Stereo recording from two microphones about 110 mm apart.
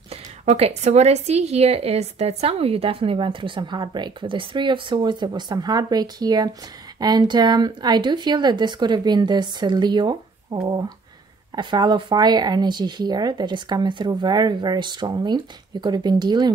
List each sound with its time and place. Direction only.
0.1 s speech: 70° right (ahead or behind); by 16.5 s 40° right (ahead or behind)